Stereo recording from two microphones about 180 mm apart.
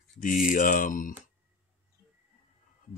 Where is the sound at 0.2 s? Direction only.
45° left (ahead or behind).